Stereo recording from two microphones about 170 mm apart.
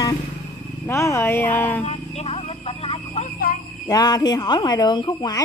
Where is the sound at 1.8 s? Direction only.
40° left (ahead or behind).